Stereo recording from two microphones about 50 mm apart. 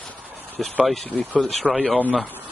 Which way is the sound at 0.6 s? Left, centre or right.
Centre.